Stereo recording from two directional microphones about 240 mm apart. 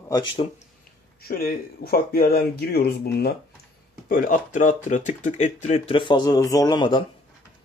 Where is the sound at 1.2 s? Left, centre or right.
Left; by 7.0 s centre.